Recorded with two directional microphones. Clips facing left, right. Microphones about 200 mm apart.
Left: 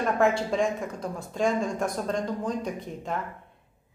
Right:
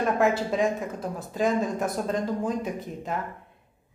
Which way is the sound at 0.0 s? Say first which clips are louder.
Right 1 dB; 5° right (ahead or behind).